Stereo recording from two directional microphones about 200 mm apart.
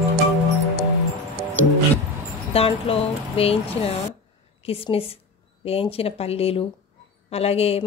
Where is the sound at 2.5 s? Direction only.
30° left (ahead or behind).